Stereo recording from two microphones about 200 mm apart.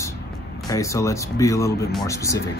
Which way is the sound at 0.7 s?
15° left (ahead or behind).